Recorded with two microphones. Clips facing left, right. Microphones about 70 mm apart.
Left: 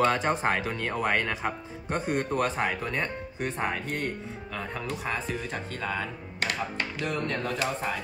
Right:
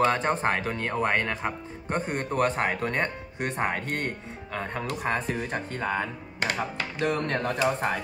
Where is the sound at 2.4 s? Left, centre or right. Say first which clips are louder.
Right 6 dB; right.